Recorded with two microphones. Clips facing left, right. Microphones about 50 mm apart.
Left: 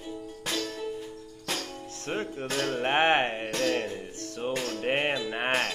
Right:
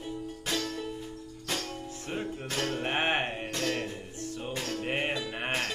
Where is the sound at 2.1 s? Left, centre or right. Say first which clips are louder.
Left 4 dB; left.